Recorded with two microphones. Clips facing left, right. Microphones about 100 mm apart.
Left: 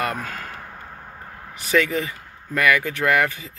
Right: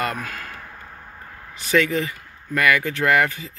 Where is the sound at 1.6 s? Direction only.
15° left (ahead or behind).